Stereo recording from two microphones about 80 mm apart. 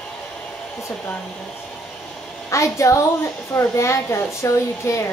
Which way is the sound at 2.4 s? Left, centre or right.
Left.